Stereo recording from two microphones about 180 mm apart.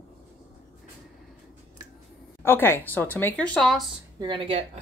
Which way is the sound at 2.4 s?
10° left (ahead or behind).